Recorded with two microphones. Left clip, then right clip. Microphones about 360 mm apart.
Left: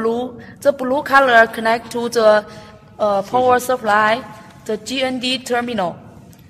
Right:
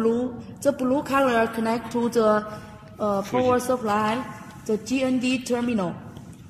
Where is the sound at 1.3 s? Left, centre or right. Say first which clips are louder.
Left 11 dB; left.